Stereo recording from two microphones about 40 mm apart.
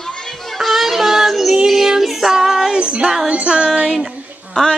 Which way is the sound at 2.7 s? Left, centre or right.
Right.